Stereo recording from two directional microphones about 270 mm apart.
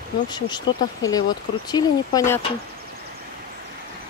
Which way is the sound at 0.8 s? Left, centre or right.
Centre.